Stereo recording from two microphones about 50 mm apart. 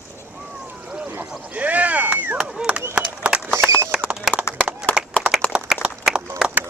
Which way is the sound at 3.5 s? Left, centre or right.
Right.